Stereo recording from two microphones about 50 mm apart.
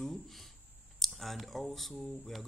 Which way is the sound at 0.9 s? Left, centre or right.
Centre.